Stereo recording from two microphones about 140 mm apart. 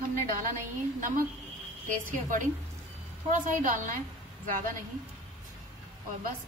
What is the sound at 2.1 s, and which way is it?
A woman's voice, 65° right (ahead or behind).